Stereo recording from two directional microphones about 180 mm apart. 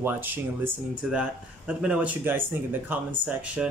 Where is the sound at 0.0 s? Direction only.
10° right (ahead or behind).